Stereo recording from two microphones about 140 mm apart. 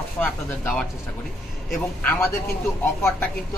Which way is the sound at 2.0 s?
10° left (ahead or behind).